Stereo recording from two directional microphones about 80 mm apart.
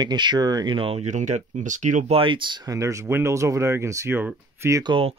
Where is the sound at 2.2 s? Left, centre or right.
Right.